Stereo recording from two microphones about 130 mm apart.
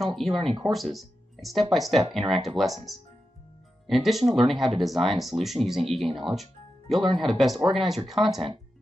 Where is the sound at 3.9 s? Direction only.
Centre (ahead or behind).